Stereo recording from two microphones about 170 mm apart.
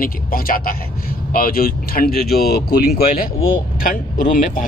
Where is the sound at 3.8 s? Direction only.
55° left (ahead or behind).